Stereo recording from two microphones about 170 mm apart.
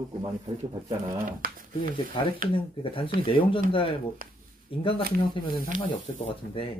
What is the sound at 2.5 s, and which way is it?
Speech, 30° left (ahead or behind).